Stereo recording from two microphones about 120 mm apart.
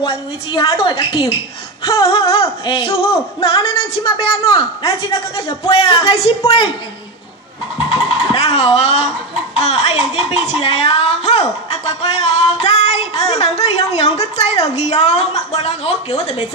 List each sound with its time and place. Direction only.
0.5 s a woman's voice: 45° left (ahead or behind)
8.3 s speech: 55° left (ahead or behind)